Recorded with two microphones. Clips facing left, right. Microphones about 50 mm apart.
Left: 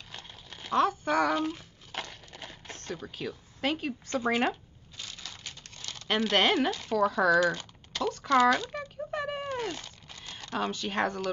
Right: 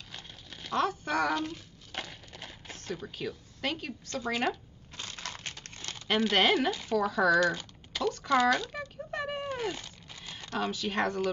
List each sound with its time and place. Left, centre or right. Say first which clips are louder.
0.1 s crumpling: left 2 dB; centre
2.0 s a sound: left 1 dB; centre
3.7 s a woman's voice: left 5 dB; centre
4.9 s crushing: right 2 dB; right
5.2 s a sound: right 4 dB; right
6.0 s speech: even; centre
7.5 s typing: left 1 dB; centre
10.5 s speech: left 1 dB; centre